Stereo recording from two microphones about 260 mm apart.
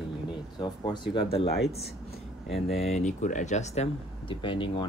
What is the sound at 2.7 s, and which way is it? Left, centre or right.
Speech, left.